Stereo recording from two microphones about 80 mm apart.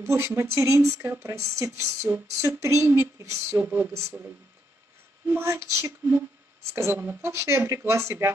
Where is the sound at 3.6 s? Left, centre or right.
Right.